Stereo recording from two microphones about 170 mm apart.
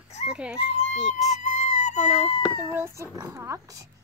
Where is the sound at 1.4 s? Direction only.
45° left (ahead or behind).